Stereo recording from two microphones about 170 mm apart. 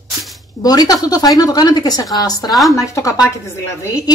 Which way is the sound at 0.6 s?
25° left (ahead or behind).